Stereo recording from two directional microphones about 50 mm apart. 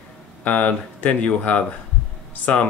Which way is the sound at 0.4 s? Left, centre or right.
Left.